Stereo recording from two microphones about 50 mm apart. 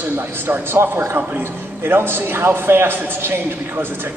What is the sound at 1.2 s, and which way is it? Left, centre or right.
A man's voice, right.